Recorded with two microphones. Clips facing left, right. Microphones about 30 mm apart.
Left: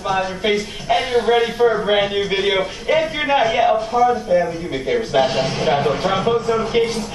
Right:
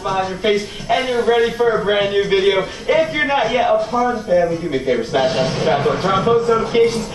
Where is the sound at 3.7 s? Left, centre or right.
Centre.